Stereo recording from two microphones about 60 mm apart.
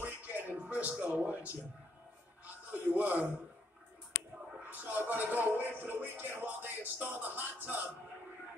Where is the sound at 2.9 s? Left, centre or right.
Right.